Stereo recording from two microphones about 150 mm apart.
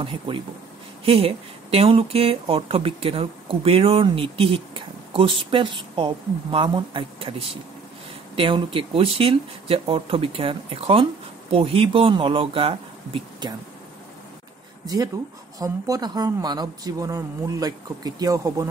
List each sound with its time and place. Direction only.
0.0 s speech: 35° right (ahead or behind)
15.6 s speech: 25° right (ahead or behind)